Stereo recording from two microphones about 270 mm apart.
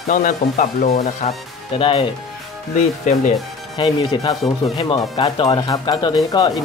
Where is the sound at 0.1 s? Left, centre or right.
Left.